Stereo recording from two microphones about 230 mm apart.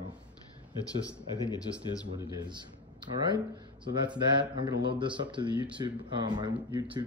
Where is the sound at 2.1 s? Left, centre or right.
Centre.